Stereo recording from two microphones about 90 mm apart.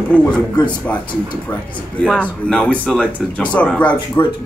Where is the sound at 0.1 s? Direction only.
15° left (ahead or behind).